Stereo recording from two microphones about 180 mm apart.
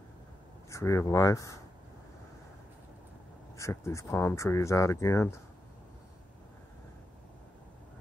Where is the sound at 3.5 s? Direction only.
15° left (ahead or behind).